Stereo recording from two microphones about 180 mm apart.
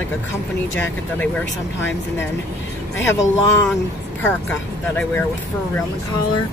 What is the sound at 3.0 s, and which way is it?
Speech, 15° left (ahead or behind).